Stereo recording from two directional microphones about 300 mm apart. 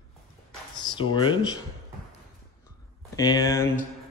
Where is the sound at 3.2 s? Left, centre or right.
Centre.